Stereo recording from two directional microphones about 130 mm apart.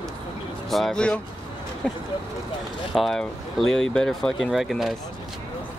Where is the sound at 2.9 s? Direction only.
Centre (ahead or behind).